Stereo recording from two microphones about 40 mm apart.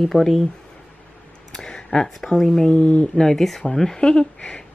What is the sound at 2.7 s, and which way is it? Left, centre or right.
Speech, left.